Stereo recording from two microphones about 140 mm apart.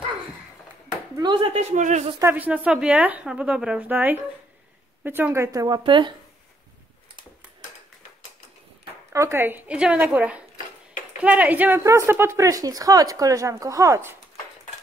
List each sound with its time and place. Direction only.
1.1 s speech: 35° right (ahead or behind); by 2.0 s 60° right (ahead or behind)
2.1 s a woman's voice: 15° right (ahead or behind)
5.9 s speech: 35° right (ahead or behind)
9.1 s a woman's voice: 20° right (ahead or behind)